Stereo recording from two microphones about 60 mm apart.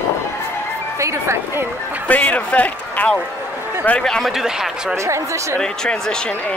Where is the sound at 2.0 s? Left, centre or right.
Left.